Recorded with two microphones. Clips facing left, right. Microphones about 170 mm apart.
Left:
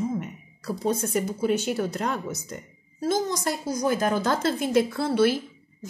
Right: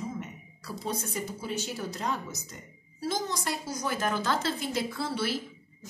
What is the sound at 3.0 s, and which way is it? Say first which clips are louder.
A woman's voice: left 7 dB; 45° left (ahead or behind).